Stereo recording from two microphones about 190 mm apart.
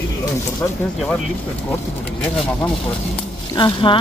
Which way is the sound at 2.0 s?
5° left (ahead or behind).